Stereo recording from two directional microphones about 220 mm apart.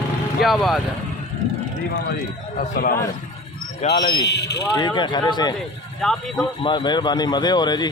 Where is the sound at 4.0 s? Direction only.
15° left (ahead or behind).